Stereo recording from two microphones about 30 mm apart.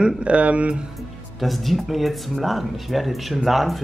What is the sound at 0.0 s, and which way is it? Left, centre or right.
Speech, right.